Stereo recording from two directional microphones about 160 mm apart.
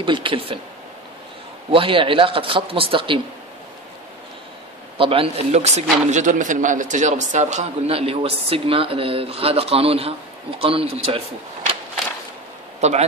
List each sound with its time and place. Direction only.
0.0 s a man's voice: 30° right (ahead or behind)
1.7 s a man's voice: 35° right (ahead or behind)
4.9 s a man's voice: 35° right (ahead or behind)
12.8 s speech: 45° right (ahead or behind)